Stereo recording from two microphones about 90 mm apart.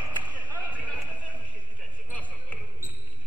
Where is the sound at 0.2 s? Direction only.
15° right (ahead or behind).